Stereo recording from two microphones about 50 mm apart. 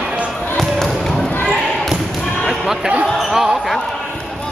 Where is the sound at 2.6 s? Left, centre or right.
Centre.